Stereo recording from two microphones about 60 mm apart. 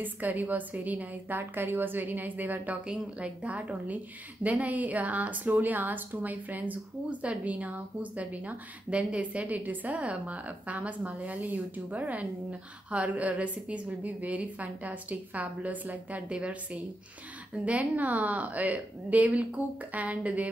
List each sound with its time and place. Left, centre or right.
0.0 s a woman's voice: right